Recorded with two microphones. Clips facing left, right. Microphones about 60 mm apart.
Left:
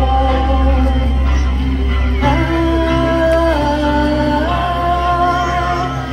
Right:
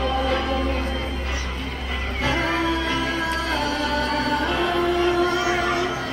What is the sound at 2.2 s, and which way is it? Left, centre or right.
Music, centre.